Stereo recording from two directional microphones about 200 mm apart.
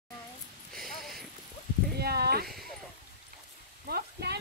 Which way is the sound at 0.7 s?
Centre (ahead or behind).